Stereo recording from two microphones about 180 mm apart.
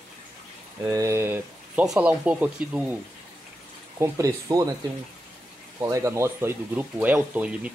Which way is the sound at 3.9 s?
15° right (ahead or behind).